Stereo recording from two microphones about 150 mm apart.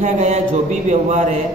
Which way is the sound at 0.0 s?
50° right (ahead or behind).